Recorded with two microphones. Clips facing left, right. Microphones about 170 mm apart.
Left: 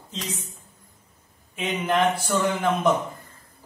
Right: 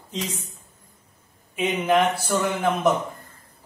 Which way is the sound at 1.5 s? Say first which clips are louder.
Right 4 dB; 5° right (ahead or behind).